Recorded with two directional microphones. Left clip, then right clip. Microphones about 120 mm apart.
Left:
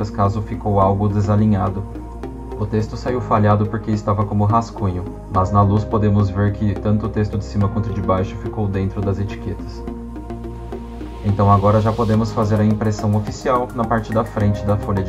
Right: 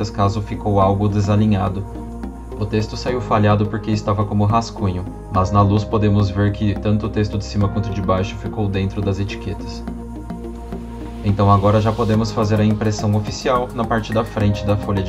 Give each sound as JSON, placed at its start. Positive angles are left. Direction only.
{"t": 0.0, "sound": "speech", "side_deg": -20}
{"t": 3.1, "sound": "speech", "side_deg": -20}
{"t": 11.3, "sound": "speech", "side_deg": -30}
{"t": 11.9, "sound": "a man's voice", "side_deg": 0}
{"t": 12.2, "sound": "speech", "side_deg": -15}
{"t": 13.5, "sound": "speech", "side_deg": -30}